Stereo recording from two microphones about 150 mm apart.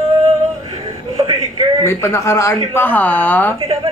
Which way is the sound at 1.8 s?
20° left (ahead or behind).